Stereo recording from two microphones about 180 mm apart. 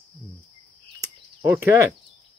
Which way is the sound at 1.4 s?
10° right (ahead or behind).